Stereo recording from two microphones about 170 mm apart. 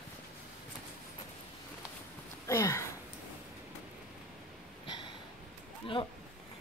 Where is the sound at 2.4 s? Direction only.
15° left (ahead or behind).